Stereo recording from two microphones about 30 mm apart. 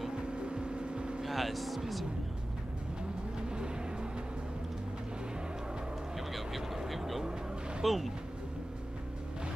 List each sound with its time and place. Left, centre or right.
0.3 s vehicle: right
1.2 s speech: centre
3.4 s vehicle: right
6.1 s vehicle: centre
7.8 s speech: centre